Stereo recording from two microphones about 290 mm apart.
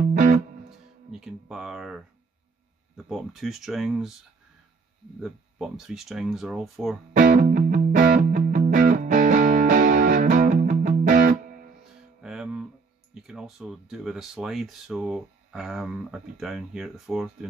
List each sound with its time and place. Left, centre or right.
1.2 s speech: centre
3.1 s speech: centre
5.2 s speech: centre
7.2 s music: right
12.2 s music: centre
13.1 s speech: centre